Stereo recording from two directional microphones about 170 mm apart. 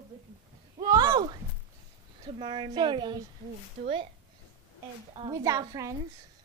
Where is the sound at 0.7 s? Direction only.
25° right (ahead or behind).